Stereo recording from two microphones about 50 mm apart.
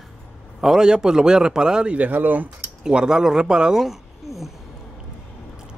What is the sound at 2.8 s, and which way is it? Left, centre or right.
Speech, centre.